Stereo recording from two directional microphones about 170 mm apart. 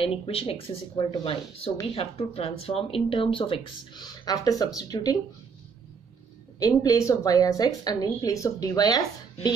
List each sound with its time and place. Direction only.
0.0 s speech: 35° left (ahead or behind)
6.6 s speech: 20° left (ahead or behind)